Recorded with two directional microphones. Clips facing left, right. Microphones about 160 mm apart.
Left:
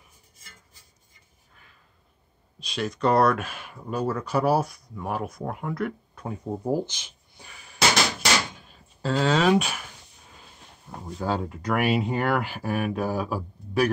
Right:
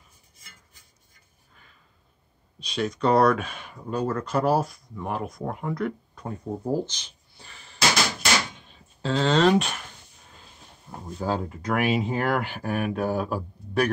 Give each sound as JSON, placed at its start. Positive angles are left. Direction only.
{"t": 2.6, "sound": "speech", "side_deg": 0}
{"t": 11.1, "sound": "speech", "side_deg": 0}